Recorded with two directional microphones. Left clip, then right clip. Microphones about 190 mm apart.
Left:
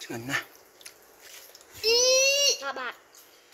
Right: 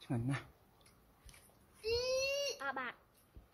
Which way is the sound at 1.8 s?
35° left (ahead or behind).